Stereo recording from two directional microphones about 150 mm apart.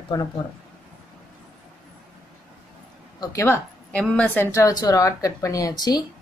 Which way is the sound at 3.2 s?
20° left (ahead or behind).